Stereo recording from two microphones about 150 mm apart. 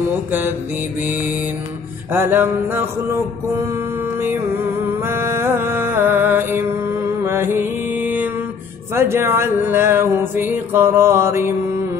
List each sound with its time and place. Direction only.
0.3 s music: 15° right (ahead or behind)
4.9 s music: 15° right (ahead or behind)